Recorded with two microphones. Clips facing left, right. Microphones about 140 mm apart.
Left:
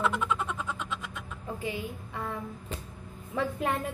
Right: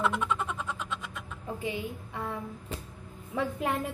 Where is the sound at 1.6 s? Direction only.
20° right (ahead or behind).